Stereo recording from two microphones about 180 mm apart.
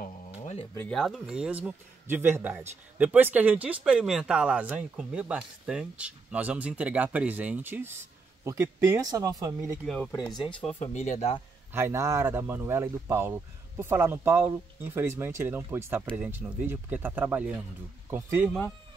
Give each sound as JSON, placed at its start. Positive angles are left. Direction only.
{"t": 0.4, "sound": "music", "side_deg": 35}
{"t": 0.7, "sound": "a man's voice", "side_deg": 5}
{"t": 10.1, "sound": "speech", "side_deg": 25}
{"t": 10.8, "sound": "speech", "side_deg": 40}
{"t": 11.7, "sound": "a man's voice", "side_deg": -15}